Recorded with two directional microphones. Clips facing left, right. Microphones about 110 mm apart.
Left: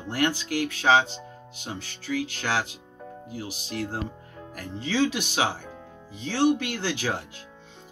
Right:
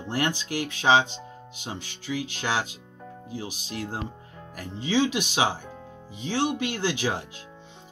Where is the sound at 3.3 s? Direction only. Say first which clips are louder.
Even; 20° right (ahead or behind).